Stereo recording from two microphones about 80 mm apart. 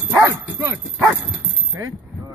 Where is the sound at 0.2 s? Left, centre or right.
Right.